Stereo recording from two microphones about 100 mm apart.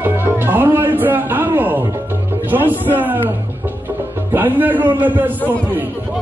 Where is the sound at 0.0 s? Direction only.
20° right (ahead or behind).